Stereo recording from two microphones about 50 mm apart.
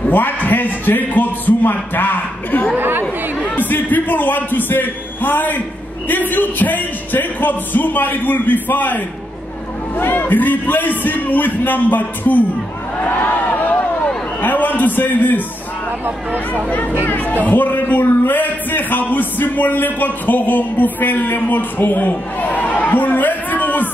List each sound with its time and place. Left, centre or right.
0.1 s speech: left
2.8 s speech: right
3.5 s speech: left
17.0 s speech: left